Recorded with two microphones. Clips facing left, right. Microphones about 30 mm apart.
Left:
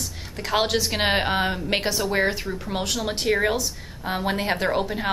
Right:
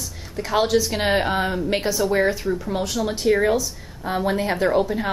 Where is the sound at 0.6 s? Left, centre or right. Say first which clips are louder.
Right 4 dB; left.